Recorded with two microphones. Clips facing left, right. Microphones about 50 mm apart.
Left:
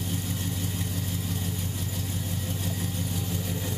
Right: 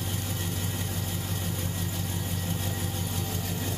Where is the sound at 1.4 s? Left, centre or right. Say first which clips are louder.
Even; centre.